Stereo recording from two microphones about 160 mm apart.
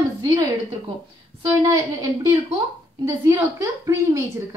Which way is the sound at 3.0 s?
15° right (ahead or behind).